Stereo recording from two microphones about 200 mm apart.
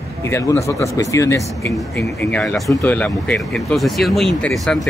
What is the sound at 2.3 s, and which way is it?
Speech, 5° left (ahead or behind).